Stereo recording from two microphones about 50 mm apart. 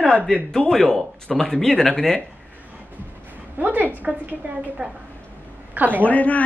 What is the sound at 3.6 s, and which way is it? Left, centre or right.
A woman's voice, right.